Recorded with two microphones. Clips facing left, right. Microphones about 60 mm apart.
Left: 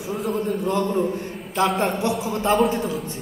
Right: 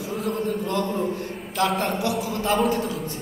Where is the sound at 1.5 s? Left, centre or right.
Centre.